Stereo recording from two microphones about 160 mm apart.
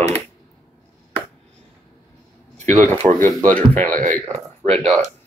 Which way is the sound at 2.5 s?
45° right (ahead or behind).